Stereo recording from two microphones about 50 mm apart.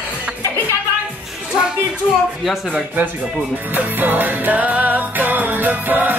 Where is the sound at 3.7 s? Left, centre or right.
Right.